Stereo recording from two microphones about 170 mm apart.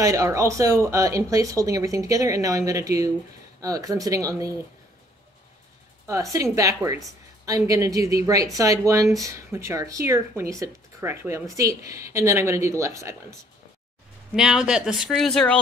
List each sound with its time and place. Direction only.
0.0 s speech: 20° right (ahead or behind)
6.0 s speech: 20° right (ahead or behind)
14.3 s speech: 5° right (ahead or behind)